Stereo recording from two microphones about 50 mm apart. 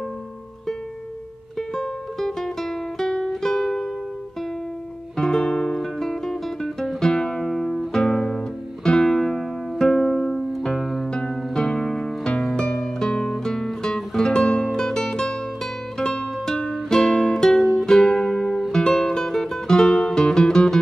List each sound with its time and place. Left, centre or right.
1.8 s music: centre
5.1 s music: centre
11.1 s music: centre